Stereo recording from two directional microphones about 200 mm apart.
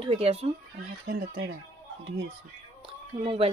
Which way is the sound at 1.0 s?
50° right (ahead or behind).